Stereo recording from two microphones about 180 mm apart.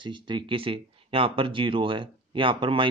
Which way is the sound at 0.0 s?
25° right (ahead or behind).